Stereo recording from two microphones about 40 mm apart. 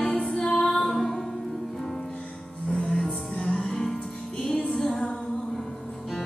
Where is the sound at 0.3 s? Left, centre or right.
Centre.